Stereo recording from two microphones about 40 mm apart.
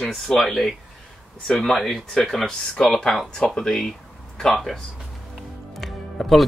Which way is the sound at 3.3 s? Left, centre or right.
Centre.